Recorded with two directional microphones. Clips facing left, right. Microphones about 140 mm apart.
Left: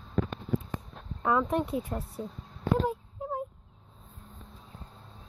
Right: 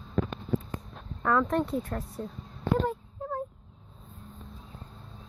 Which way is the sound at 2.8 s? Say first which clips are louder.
Even; 5° left (ahead or behind).